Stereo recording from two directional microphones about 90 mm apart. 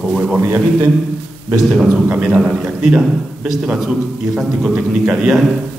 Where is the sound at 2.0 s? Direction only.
15° right (ahead or behind).